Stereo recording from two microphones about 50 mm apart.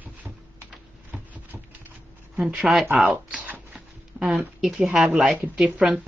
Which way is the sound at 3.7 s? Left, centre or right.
Centre.